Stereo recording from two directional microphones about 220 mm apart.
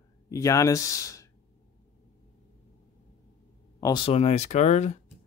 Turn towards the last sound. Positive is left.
turn(degrees=30)  # may be behind; listen again after turning